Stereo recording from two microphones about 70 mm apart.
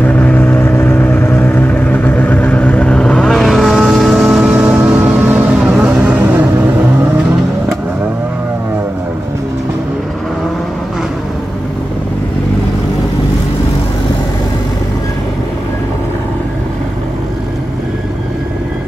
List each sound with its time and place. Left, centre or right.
0.0 s vehicle: left
3.3 s vehicle: centre
4.5 s vehicle: right